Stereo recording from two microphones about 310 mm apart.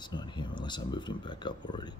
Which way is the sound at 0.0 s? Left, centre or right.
Centre.